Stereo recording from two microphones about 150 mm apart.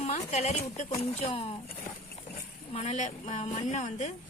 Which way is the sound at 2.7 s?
50° left (ahead or behind).